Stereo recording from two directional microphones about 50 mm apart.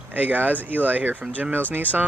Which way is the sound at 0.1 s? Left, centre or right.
Right.